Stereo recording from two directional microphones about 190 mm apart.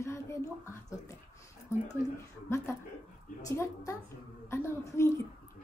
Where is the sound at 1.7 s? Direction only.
15° left (ahead or behind).